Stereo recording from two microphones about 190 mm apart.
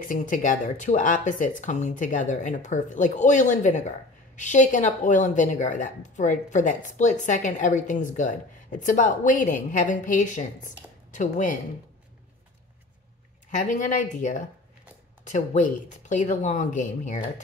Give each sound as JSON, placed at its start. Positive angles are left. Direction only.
{"t": 0.0, "sound": "speech", "side_deg": 45}
{"t": 13.6, "sound": "speech", "side_deg": 40}